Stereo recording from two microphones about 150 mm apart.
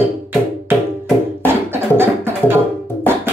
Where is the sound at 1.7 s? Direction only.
15° right (ahead or behind).